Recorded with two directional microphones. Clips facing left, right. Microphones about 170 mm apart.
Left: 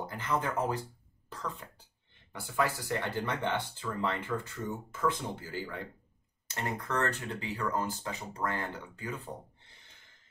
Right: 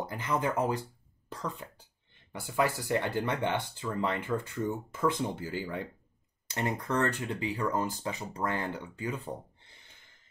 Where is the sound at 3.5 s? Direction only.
15° right (ahead or behind).